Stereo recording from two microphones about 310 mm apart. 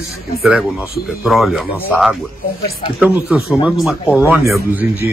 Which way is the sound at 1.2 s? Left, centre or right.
Centre.